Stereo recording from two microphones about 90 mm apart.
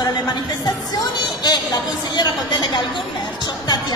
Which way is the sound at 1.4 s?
50° left (ahead or behind).